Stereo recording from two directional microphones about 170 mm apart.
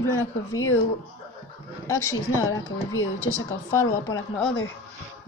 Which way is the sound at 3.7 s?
15° left (ahead or behind).